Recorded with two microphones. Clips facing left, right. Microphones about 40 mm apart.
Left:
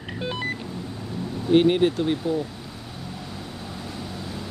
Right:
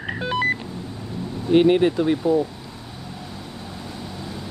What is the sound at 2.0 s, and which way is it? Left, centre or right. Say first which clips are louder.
Speech: right 5 dB; centre.